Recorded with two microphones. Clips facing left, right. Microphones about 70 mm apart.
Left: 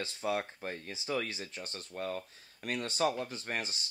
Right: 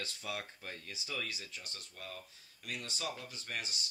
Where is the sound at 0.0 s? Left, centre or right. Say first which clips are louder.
Left 8 dB; left.